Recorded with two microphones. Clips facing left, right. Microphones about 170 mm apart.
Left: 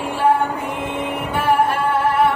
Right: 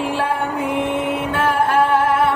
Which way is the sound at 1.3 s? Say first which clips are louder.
Left 2 dB; 90° right.